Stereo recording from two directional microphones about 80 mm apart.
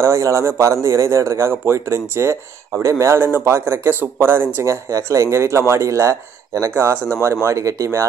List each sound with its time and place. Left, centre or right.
0.0 s speech: right